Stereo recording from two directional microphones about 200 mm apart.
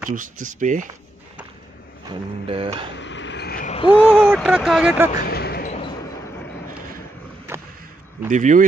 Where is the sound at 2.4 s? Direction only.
25° right (ahead or behind).